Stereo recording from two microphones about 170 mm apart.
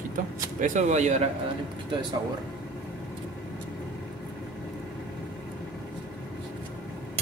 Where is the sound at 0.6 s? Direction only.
45° right (ahead or behind).